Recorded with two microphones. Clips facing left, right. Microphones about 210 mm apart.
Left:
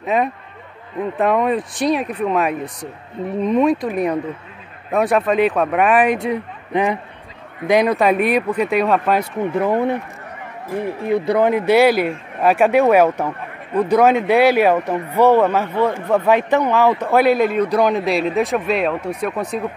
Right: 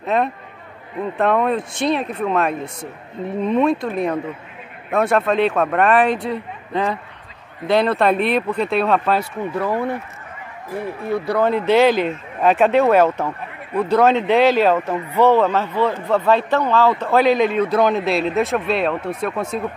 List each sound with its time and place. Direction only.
0.0 s a man's voice: 10° left (ahead or behind)
6.1 s a man's voice: 20° left (ahead or behind)
9.2 s speech: 20° left (ahead or behind)
11.1 s a man's voice: 20° left (ahead or behind); by 19.4 s centre (ahead or behind)